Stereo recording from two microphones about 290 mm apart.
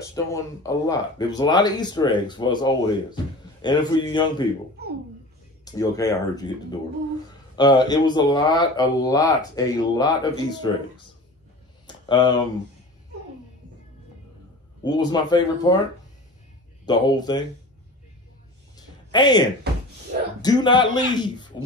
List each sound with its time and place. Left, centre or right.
0.1 s speech: centre
5.7 s speech: centre
12.1 s speech: centre
14.8 s speech: centre
16.8 s speech: centre
18.8 s a sound: centre
20.4 s speech: centre